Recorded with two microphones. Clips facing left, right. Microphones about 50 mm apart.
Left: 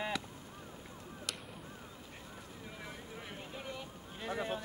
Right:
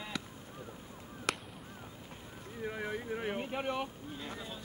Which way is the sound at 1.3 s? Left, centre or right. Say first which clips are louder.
Right 10 dB; right.